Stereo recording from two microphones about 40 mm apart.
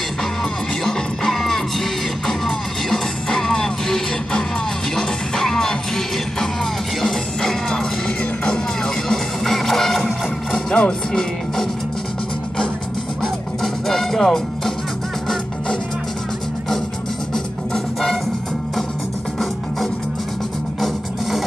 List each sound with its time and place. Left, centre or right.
1.3 s music: centre
8.8 s music: centre
10.5 s speech: left
13.6 s music: centre
20.8 s music: centre